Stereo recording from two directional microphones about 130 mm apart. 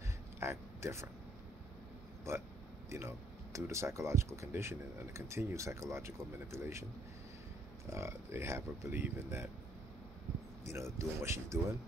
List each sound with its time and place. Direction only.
0.4 s speech: 20° right (ahead or behind)
2.9 s speech: 20° right (ahead or behind)
7.9 s speech: 20° right (ahead or behind)
10.6 s speech: 20° right (ahead or behind)